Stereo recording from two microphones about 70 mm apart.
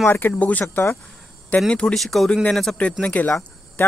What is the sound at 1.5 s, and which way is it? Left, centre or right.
Speech, centre.